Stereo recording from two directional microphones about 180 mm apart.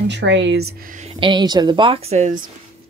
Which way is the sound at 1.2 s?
25° right (ahead or behind).